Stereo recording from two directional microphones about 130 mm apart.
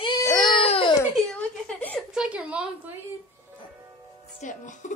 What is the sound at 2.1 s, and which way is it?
Speech, 10° right (ahead or behind).